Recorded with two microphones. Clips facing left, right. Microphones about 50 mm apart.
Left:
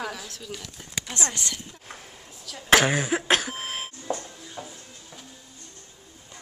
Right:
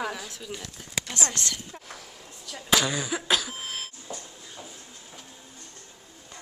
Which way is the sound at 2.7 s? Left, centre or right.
Left.